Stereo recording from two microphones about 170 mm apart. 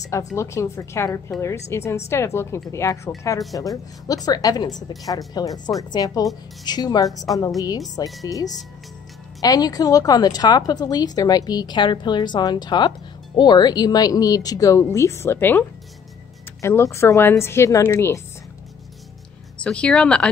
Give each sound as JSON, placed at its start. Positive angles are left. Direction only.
{"t": 0.4, "sound": "a woman's voice", "side_deg": 15}
{"t": 9.4, "sound": "a woman's voice", "side_deg": 20}
{"t": 16.6, "sound": "a woman's voice", "side_deg": 15}
{"t": 19.6, "sound": "speech", "side_deg": 5}